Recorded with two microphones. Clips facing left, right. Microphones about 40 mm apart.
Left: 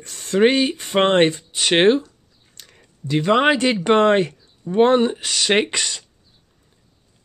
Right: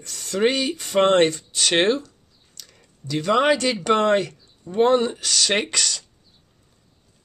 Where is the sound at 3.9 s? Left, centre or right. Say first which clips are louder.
Left 3 dB; left.